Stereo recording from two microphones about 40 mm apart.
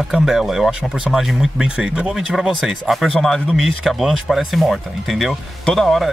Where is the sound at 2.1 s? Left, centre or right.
Centre.